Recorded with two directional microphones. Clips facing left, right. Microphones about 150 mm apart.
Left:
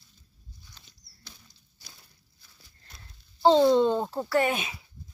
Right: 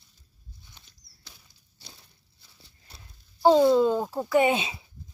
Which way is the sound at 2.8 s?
10° right (ahead or behind).